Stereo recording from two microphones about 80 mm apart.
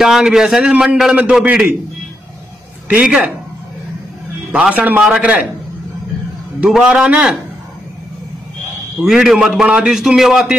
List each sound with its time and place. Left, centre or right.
0.0 s a man's voice: centre
2.9 s a man's voice: centre
4.5 s a man's voice: centre
6.6 s a man's voice: centre
9.0 s a man's voice: centre